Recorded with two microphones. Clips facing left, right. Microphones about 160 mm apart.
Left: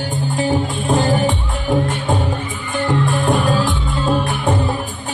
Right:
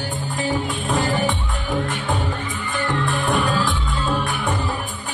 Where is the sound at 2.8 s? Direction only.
20° left (ahead or behind).